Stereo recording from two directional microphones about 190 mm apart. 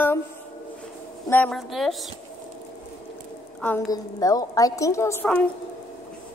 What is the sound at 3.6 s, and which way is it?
A woman's voice, 15° left (ahead or behind).